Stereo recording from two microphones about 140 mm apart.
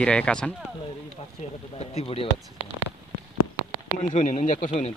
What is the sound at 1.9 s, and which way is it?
Speech, 45° left (ahead or behind).